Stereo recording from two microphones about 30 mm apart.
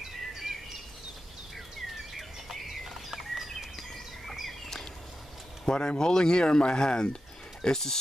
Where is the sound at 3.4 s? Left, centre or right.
Centre.